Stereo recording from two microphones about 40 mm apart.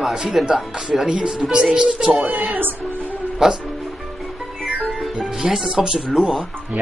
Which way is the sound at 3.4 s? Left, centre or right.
Centre.